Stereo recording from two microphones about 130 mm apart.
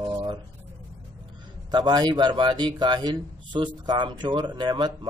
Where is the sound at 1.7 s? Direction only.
35° right (ahead or behind).